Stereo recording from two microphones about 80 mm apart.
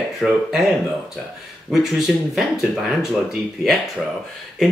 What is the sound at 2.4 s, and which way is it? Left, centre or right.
Speech, centre.